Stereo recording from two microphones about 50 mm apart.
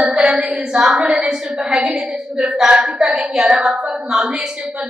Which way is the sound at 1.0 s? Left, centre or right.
Centre.